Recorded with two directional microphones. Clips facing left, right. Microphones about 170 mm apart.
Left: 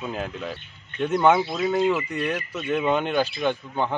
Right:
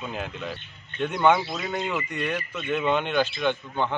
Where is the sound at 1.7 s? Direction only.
5° left (ahead or behind).